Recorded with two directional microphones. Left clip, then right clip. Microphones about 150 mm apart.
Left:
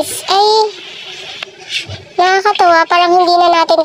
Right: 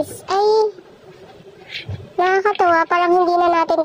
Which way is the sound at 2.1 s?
Centre (ahead or behind).